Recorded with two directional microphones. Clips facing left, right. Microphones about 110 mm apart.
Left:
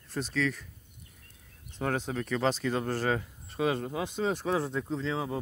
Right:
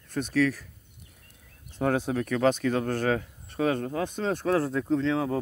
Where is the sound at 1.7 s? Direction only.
5° right (ahead or behind).